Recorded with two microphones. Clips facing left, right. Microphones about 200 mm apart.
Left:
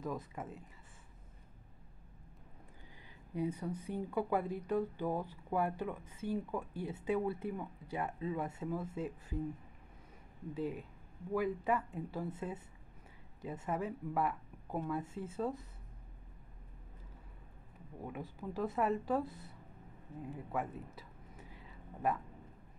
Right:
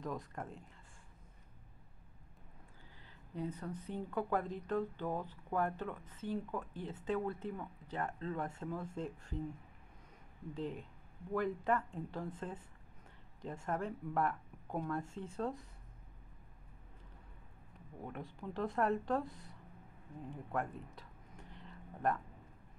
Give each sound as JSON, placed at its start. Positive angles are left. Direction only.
{"t": 0.0, "sound": "speech", "side_deg": 5}
{"t": 3.3, "sound": "speech", "side_deg": 10}
{"t": 10.5, "sound": "speech", "side_deg": 5}
{"t": 18.0, "sound": "speech", "side_deg": 5}
{"t": 20.2, "sound": "a sound", "side_deg": 5}